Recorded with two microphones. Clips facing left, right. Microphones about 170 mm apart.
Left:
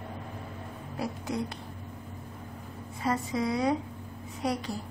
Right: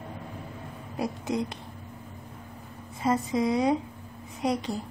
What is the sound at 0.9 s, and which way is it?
Speech, 20° right (ahead or behind).